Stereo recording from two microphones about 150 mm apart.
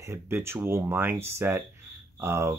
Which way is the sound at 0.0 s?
20° right (ahead or behind).